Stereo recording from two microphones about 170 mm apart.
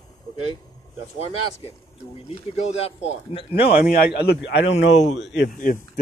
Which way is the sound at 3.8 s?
75° left (ahead or behind).